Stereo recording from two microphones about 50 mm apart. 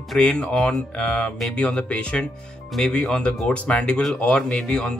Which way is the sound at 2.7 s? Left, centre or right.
Centre.